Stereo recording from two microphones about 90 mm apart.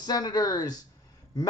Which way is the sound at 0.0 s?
50° left (ahead or behind).